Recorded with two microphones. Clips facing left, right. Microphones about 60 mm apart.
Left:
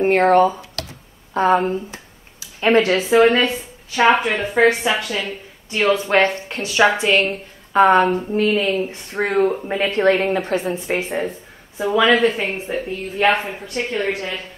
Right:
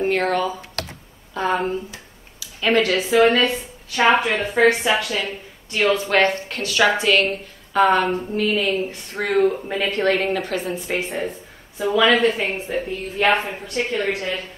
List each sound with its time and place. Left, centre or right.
0.0 s speech: left
3.0 s a woman's voice: centre
4.0 s a woman's voice: centre
5.9 s a woman's voice: left
12.0 s a woman's voice: centre